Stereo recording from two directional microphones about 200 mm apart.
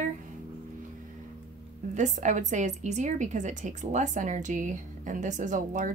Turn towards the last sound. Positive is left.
turn(degrees=-40)  # may be behind; listen again after turning